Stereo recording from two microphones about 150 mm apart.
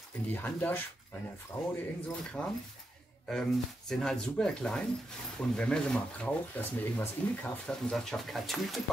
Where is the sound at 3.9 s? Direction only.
5° left (ahead or behind).